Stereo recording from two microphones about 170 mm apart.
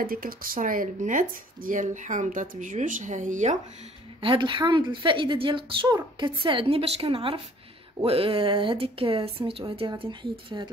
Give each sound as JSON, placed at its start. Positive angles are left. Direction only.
{"t": 0.0, "sound": "speech", "side_deg": -60}
{"t": 4.2, "sound": "a woman's voice", "side_deg": -30}